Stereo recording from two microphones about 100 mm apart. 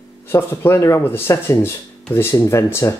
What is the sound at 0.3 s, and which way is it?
Speech, 25° left (ahead or behind).